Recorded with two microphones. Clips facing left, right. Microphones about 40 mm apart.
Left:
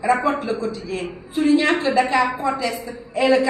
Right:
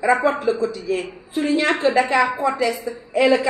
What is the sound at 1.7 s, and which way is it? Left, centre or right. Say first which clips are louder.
A woman's voice: even; right.